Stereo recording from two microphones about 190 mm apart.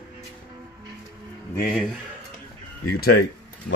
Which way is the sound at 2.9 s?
55° left (ahead or behind).